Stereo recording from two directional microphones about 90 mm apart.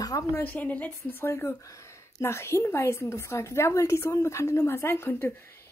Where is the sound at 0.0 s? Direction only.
40° left (ahead or behind).